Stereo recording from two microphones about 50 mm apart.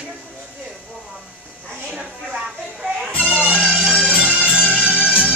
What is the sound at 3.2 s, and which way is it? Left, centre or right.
Music, right.